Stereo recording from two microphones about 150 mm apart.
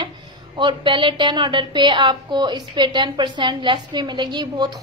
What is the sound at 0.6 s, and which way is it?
A woman's voice, 30° right (ahead or behind).